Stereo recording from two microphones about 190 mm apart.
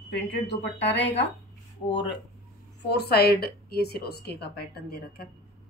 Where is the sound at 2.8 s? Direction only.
60° left (ahead or behind).